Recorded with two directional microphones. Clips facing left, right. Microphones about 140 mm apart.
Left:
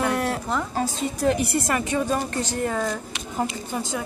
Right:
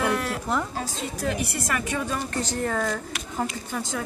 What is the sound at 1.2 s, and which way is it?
A woman's voice, 25° left (ahead or behind).